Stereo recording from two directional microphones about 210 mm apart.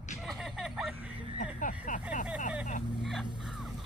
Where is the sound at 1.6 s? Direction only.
35° left (ahead or behind).